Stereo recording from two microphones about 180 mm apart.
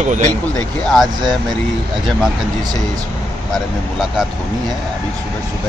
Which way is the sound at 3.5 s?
Centre (ahead or behind).